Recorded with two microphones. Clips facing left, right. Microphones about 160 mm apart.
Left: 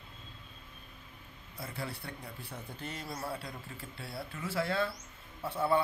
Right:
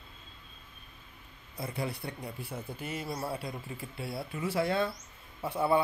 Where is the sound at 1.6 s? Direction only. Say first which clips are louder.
Right 5 dB; 15° right (ahead or behind).